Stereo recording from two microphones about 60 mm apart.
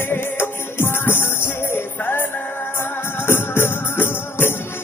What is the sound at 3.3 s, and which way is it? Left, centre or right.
Music, left.